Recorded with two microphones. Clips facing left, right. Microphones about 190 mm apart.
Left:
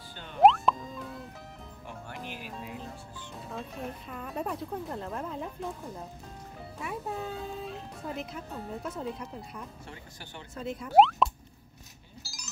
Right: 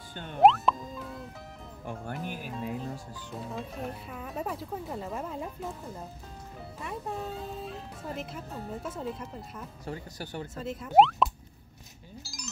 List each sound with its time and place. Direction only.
0.1 s speech: 50° right (ahead or behind)
0.4 s music: centre (ahead or behind)
2.2 s speech: 45° right (ahead or behind)
3.3 s speech: 5° right (ahead or behind)
9.8 s speech: 40° right (ahead or behind)
10.6 s speech: centre (ahead or behind)
12.2 s chink: centre (ahead or behind)